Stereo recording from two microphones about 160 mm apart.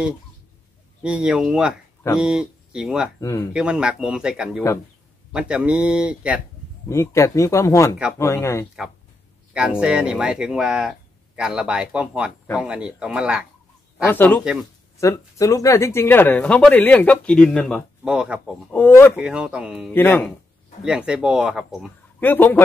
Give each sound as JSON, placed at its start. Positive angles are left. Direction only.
{"t": 1.0, "sound": "speech", "side_deg": -5}
{"t": 3.2, "sound": "speech", "side_deg": 20}
{"t": 3.5, "sound": "speech", "side_deg": -5}
{"t": 6.9, "sound": "a man's voice", "side_deg": 20}
{"t": 9.5, "sound": "speech", "side_deg": -5}
{"t": 14.0, "sound": "a man's voice", "side_deg": 10}
{"t": 14.4, "sound": "speech", "side_deg": -5}
{"t": 15.0, "sound": "a man's voice", "side_deg": 20}
{"t": 18.1, "sound": "speech", "side_deg": -10}
{"t": 18.7, "sound": "a man's voice", "side_deg": 15}
{"t": 19.1, "sound": "speech", "side_deg": -5}
{"t": 19.9, "sound": "a man's voice", "side_deg": 15}
{"t": 20.8, "sound": "speech", "side_deg": -5}
{"t": 22.2, "sound": "a man's voice", "side_deg": 10}